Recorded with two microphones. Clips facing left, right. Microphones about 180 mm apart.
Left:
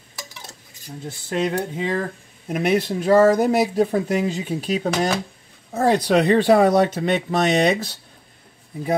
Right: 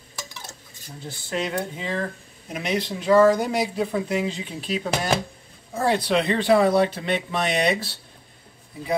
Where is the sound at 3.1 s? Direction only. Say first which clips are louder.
Left 2 dB; 40° left (ahead or behind).